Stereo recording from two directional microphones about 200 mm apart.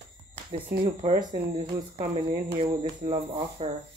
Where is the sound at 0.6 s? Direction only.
45° right (ahead or behind).